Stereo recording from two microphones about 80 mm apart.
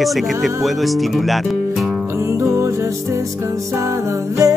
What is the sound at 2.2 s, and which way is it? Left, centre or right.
Music, right.